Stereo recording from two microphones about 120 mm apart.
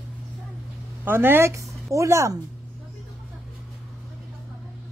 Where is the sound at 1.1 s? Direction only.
20° right (ahead or behind).